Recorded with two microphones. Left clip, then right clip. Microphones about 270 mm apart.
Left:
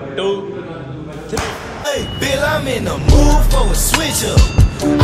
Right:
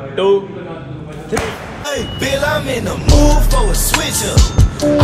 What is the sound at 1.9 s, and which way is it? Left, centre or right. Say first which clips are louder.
Music: even; centre.